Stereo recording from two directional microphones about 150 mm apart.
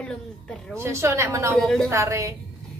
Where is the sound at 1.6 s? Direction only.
5° left (ahead or behind).